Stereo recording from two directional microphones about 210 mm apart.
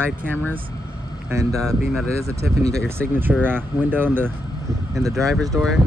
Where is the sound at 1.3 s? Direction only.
15° right (ahead or behind).